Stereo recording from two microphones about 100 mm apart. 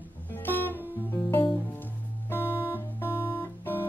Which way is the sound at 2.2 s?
20° left (ahead or behind).